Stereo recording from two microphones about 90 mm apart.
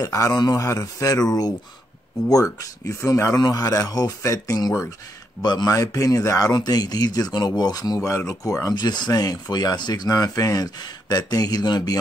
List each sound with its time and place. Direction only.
0.0 s speech: 40° left (ahead or behind)
0.6 s speech: 35° left (ahead or behind)
3.3 s speech: 45° left (ahead or behind)
5.4 s speech: 50° left (ahead or behind)
5.8 s speech: 40° left (ahead or behind)
8.1 s speech: 30° left (ahead or behind)
8.7 s speech: 50° left (ahead or behind)